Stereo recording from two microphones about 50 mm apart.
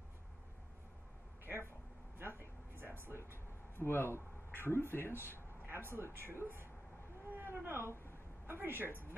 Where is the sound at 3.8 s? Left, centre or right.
Left.